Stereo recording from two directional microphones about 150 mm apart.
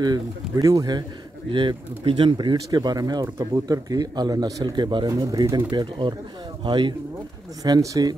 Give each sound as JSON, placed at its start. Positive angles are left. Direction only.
{"t": 0.0, "sound": "speech", "side_deg": -25}